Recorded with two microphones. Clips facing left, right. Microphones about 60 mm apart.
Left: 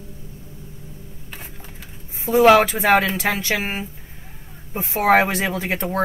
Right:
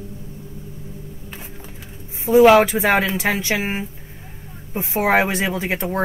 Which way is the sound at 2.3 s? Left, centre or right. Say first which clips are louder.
Right 2 dB; centre.